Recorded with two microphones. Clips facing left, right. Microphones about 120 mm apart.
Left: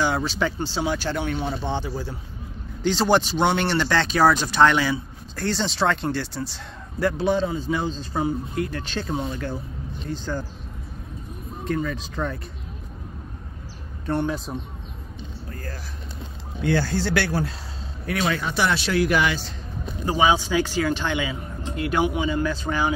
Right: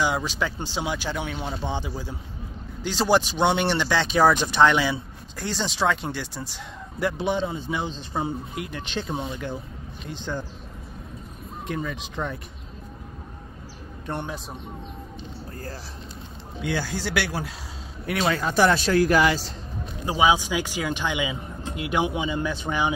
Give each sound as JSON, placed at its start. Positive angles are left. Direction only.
{"t": 0.0, "sound": "a man's voice", "side_deg": -10}
{"t": 11.6, "sound": "speech", "side_deg": -20}
{"t": 14.0, "sound": "speech", "side_deg": -15}
{"t": 16.6, "sound": "speech", "side_deg": -10}
{"t": 18.0, "sound": "a man's voice", "side_deg": -25}
{"t": 18.5, "sound": "speech", "side_deg": -45}
{"t": 20.1, "sound": "speech", "side_deg": -10}